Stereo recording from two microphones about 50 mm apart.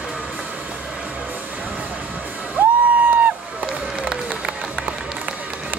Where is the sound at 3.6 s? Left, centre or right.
Centre.